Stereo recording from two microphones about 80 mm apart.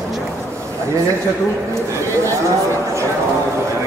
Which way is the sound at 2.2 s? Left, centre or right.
Right.